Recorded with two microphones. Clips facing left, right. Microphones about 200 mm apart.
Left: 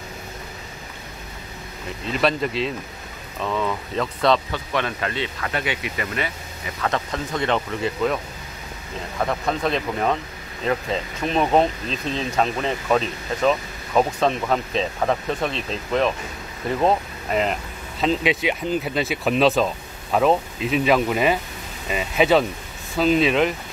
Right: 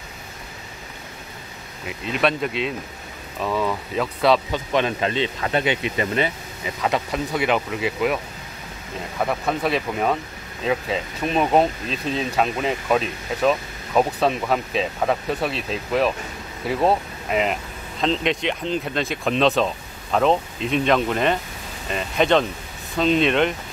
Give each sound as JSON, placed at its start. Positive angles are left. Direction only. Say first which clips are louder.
{"t": 1.9, "sound": "speech", "louder": "even", "side_deg": -5}
{"t": 4.5, "sound": "speech", "louder": "right 4 dB", "side_deg": -20}
{"t": 6.8, "sound": "speech", "louder": "right 2 dB", "side_deg": -10}
{"t": 9.2, "sound": "speech", "louder": "even", "side_deg": -5}